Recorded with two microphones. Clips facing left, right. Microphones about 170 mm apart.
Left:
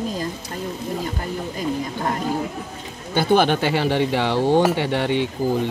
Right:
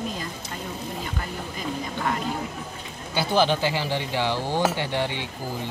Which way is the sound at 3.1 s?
60° left (ahead or behind).